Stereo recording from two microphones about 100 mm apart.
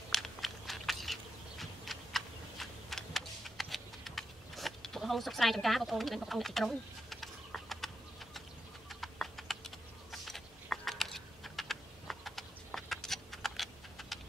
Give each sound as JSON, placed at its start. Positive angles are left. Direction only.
{"t": 0.1, "sound": "a sound", "side_deg": 0}
{"t": 8.8, "sound": "typing", "side_deg": 0}
{"t": 10.1, "sound": "computer keyboard", "side_deg": 0}